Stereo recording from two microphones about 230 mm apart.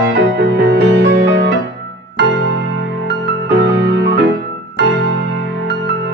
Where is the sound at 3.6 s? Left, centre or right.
Right.